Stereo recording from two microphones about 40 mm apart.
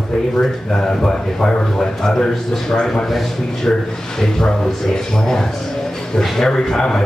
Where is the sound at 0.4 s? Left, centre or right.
Centre.